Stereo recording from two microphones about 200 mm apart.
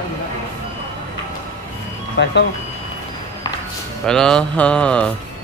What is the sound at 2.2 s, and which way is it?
Speech, 65° left (ahead or behind).